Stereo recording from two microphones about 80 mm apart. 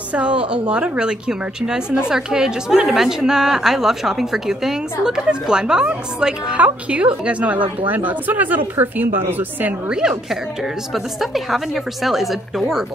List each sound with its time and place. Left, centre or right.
0.1 s a woman's voice: centre
9.8 s a woman's voice: centre
11.1 s a woman's voice: centre